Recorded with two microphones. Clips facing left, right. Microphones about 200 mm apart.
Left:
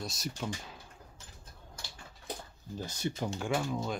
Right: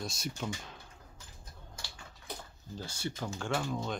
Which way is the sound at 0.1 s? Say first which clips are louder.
Even; centre (ahead or behind).